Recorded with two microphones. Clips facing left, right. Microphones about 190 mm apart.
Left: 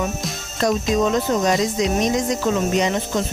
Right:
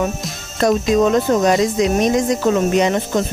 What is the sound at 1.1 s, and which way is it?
Speech, 60° right (ahead or behind).